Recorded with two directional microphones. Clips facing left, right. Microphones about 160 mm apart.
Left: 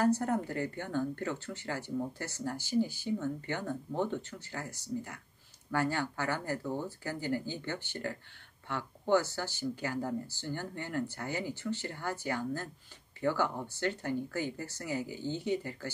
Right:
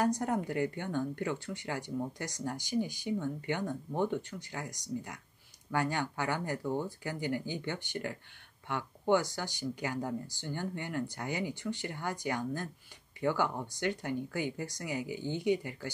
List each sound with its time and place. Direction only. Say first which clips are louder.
0.0 s speech: left 2 dB; 15° right (ahead or behind)